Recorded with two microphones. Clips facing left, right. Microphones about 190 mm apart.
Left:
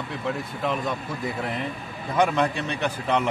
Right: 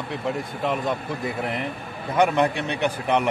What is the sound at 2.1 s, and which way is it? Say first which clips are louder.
Speech: right 2 dB; 15° right (ahead or behind).